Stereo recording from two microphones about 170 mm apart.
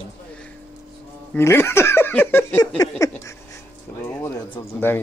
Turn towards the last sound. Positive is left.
turn(degrees=15)  # may be behind; listen again after turning